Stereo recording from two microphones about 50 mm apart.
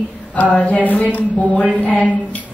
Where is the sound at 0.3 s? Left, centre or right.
Left.